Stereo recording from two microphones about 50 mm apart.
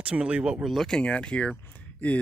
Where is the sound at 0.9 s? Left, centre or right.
Left.